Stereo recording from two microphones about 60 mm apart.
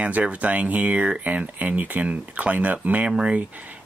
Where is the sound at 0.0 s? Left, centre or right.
Right.